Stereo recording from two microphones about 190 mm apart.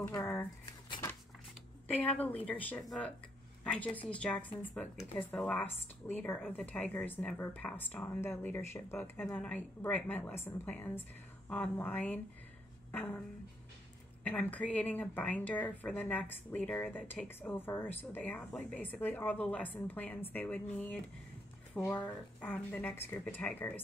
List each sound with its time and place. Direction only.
0.0 s speech: 10° left (ahead or behind)
2.0 s speech: 10° left (ahead or behind)
14.2 s speech: 10° left (ahead or behind)